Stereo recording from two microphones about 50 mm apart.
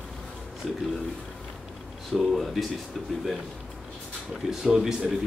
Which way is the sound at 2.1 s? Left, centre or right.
Centre.